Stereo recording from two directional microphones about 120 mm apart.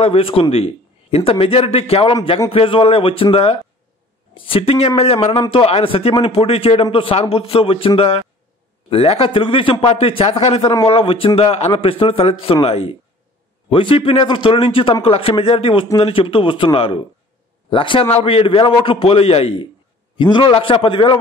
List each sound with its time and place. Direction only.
0.0 s a man's voice: 55° left (ahead or behind)
20.2 s a man's voice: 40° left (ahead or behind)